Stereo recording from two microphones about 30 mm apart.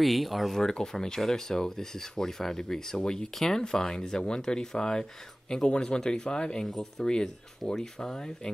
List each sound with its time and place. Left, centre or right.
0.0 s speech: centre
0.5 s speech: centre
3.0 s speech: left
3.3 s speech: centre
6.6 s speech: centre
7.1 s speech: left